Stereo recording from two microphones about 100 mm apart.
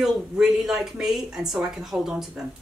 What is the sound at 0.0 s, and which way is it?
A woman's voice, 5° right (ahead or behind).